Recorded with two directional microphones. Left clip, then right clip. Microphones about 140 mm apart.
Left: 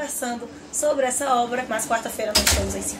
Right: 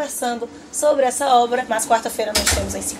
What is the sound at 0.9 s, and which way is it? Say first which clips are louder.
A woman's voice: right 6 dB; 25° right (ahead or behind).